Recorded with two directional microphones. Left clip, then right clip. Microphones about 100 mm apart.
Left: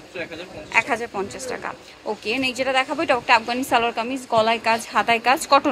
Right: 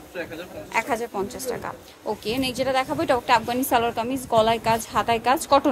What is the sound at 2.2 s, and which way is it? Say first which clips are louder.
A woman's voice: left 3 dB; 35° right (ahead or behind).